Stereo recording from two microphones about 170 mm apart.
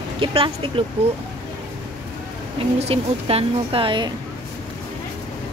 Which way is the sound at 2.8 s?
35° right (ahead or behind).